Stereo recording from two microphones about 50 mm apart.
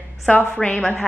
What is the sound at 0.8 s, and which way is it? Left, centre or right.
Speech, centre.